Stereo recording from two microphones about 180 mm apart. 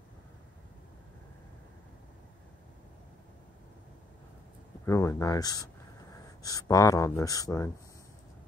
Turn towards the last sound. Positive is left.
turn(degrees=20)  # may be behind; listen again after turning